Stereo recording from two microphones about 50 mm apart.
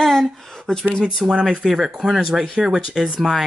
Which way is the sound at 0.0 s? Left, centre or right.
Centre.